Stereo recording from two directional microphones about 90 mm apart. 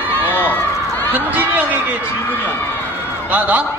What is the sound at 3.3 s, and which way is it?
Speech, 20° right (ahead or behind).